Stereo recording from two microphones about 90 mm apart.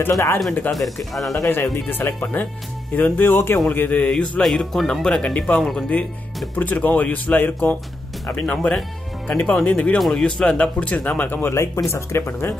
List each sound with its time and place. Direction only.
0.1 s speech: 30° left (ahead or behind)
0.7 s speech: centre (ahead or behind)
1.3 s speech: 30° left (ahead or behind); by 5.6 s 10° left (ahead or behind)
5.6 s speech: centre (ahead or behind)
6.5 s speech: 20° left (ahead or behind)
8.4 s speech: 10° left (ahead or behind); by 12.5 s 25° left (ahead or behind)